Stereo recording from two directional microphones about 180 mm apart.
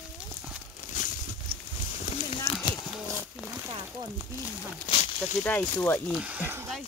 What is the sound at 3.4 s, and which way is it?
Speech, 5° right (ahead or behind).